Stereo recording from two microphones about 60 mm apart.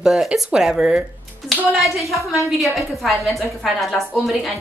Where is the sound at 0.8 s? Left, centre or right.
Centre.